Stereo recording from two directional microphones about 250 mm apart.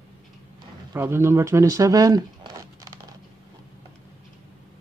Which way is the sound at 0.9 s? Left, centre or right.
Centre.